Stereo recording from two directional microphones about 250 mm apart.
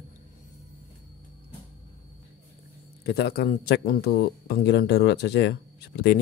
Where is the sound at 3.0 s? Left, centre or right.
Left.